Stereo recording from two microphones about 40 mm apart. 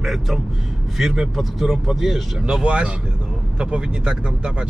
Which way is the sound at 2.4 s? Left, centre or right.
Right.